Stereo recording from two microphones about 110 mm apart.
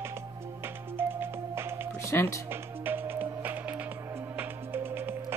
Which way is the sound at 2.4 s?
20° right (ahead or behind).